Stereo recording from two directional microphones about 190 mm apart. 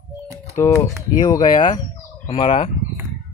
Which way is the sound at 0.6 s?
15° left (ahead or behind).